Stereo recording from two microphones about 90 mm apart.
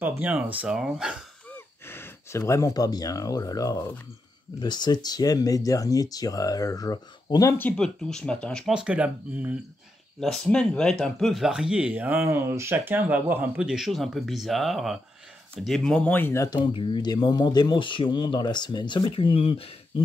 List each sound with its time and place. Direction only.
0.2 s speech: 15° right (ahead or behind)
1.5 s speech: 25° left (ahead or behind); by 3.9 s 40° left (ahead or behind)
4.6 s speech: 55° left (ahead or behind)
7.7 s speech: 10° left (ahead or behind)
8.6 s speech: 10° right (ahead or behind)
10.2 s speech: 5° left (ahead or behind); by 13.7 s 20° right (ahead or behind)
13.7 s speech: 5° right (ahead or behind); by 16.3 s 20° left (ahead or behind)
16.4 s speech: 60° left (ahead or behind); by 19.7 s 90° left